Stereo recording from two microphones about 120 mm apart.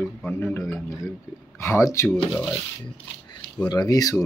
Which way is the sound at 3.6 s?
30° left (ahead or behind).